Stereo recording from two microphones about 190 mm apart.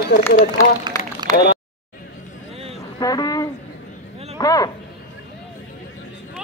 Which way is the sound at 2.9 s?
20° left (ahead or behind).